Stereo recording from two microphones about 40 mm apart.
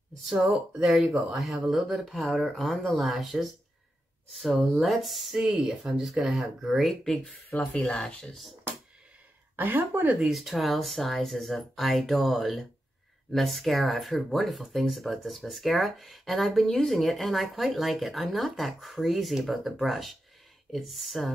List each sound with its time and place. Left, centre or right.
0.4 s speech: right
1.3 s speech: centre
6.9 s speech: centre
7.5 s speech: left
7.8 s speech: centre
9.6 s speech: right
10.2 s speech: centre